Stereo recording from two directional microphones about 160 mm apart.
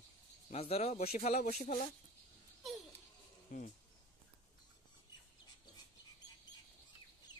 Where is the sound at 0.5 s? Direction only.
40° left (ahead or behind).